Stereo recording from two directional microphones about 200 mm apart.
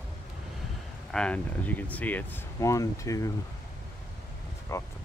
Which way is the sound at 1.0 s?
5° left (ahead or behind).